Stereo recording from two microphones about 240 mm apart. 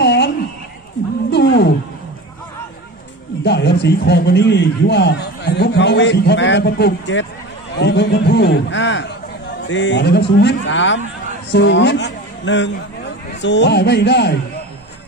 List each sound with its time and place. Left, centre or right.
0.0 s a sound: left
1.3 s roaring cats: left
3.4 s a man's voice: left